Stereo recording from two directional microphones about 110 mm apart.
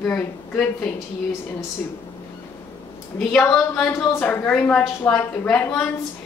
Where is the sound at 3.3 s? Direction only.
10° left (ahead or behind).